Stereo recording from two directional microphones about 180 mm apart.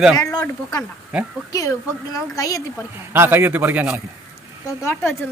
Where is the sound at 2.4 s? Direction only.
20° left (ahead or behind).